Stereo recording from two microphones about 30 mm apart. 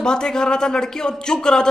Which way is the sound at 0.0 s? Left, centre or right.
Left.